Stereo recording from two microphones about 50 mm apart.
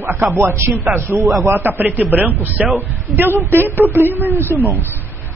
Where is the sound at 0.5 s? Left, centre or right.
Right.